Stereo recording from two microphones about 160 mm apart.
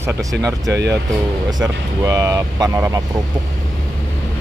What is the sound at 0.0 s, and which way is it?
Speech, 20° right (ahead or behind).